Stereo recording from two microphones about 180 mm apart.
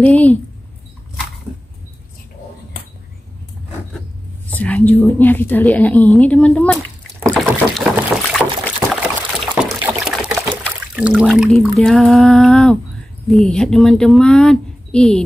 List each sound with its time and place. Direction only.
0.0 s a woman's voice: 10° left (ahead or behind)
4.5 s a woman's voice: 10° left (ahead or behind)
7.3 s boat: 5° right (ahead or behind)
8.7 s a sound: 5° right (ahead or behind)
10.6 s speech: centre (ahead or behind)